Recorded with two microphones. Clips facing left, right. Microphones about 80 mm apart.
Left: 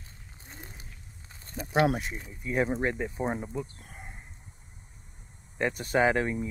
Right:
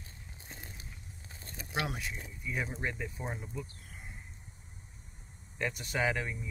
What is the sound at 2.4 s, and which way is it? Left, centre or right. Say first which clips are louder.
Speech: left 9 dB; left.